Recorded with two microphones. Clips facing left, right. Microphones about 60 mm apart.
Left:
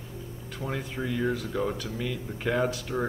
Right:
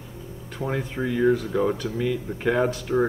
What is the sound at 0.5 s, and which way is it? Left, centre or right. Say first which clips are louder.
Speech: right 5 dB; centre.